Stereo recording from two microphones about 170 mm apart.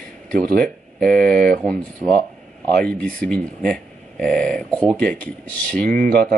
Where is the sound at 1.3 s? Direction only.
55° right (ahead or behind).